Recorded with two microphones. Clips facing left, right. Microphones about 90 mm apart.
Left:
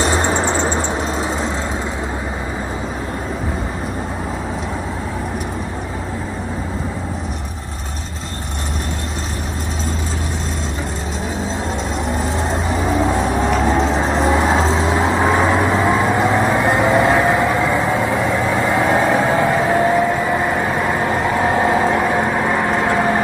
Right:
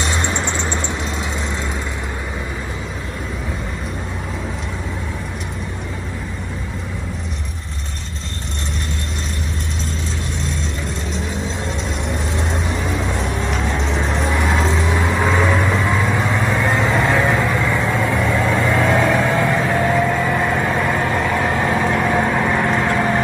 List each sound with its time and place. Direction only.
0.0 s a sound: 40° left (ahead or behind)
12.1 s vehicle: 40° left (ahead or behind); by 21.0 s 15° left (ahead or behind)
21.0 s vehicle: 25° left (ahead or behind)
21.9 s vehicle: 15° left (ahead or behind)